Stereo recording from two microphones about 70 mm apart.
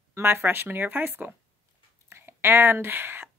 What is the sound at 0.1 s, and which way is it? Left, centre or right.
A woman's voice, right.